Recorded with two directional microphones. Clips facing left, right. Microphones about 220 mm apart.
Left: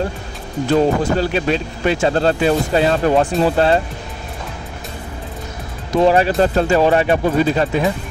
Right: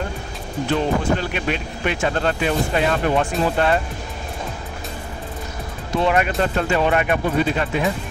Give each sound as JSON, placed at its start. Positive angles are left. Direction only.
{"t": 0.7, "sound": "speech", "side_deg": 35}
{"t": 5.9, "sound": "speech", "side_deg": 35}